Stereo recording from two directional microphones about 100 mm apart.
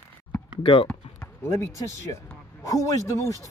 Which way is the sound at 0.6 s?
60° left (ahead or behind).